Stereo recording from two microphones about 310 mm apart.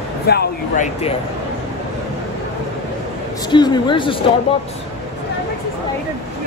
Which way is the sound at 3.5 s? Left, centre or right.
Centre.